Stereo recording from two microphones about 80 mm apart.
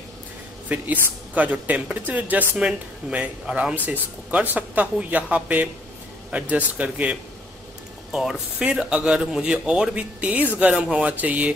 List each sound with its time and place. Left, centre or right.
0.7 s a man's voice: centre
8.1 s speech: centre